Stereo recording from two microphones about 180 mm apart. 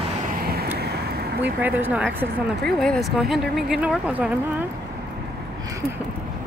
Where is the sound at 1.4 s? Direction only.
10° right (ahead or behind).